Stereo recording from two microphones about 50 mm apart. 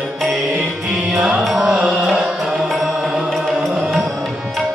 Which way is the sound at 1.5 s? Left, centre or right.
Centre.